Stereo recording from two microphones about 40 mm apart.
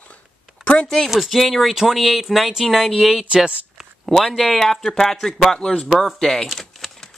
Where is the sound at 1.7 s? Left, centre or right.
Centre.